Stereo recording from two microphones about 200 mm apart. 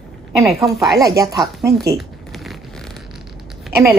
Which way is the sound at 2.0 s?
Centre (ahead or behind).